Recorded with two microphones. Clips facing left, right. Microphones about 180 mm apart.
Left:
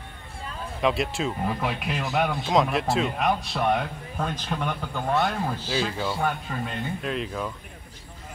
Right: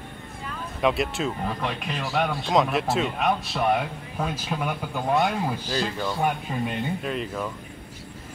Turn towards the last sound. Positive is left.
turn(degrees=0)  # may be behind; listen again after turning